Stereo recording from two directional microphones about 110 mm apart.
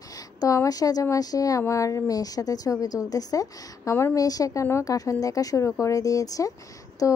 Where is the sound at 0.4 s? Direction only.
30° left (ahead or behind).